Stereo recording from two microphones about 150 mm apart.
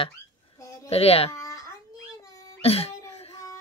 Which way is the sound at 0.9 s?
40° left (ahead or behind).